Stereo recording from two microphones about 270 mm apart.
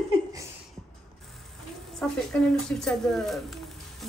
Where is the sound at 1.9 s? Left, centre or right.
Centre.